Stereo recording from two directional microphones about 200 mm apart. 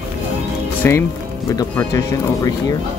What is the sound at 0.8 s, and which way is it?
Speech, 10° left (ahead or behind).